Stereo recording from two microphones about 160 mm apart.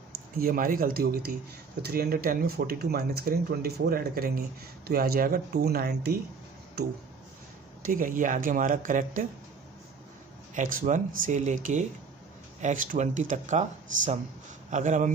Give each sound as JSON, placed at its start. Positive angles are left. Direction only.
{"t": 0.4, "sound": "speech", "side_deg": -65}
{"t": 7.8, "sound": "speech", "side_deg": -55}
{"t": 10.5, "sound": "speech", "side_deg": -55}